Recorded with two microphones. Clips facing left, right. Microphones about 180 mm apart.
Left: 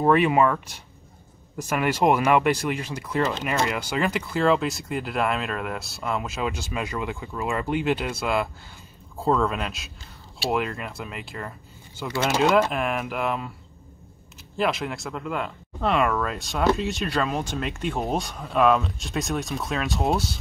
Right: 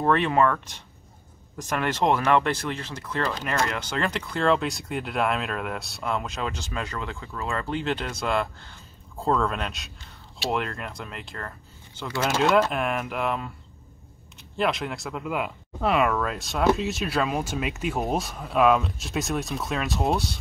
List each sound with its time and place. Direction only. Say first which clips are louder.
0.0 s speech: left 2 dB; 10° left (ahead or behind)
3.2 s speech: left 4 dB; 20° left (ahead or behind)
3.4 s speech: left 2 dB; 5° left (ahead or behind)
14.6 s speech: left 1 dB; centre (ahead or behind)